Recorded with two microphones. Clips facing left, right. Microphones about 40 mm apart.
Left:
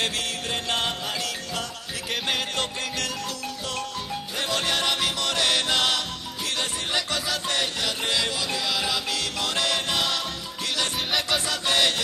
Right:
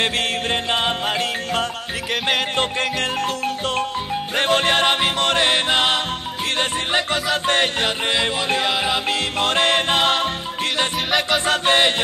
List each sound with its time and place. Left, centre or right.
0.0 s music: right
11.4 s music: right